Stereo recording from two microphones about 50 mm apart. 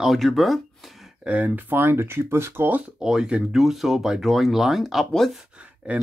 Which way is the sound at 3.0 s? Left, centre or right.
Centre.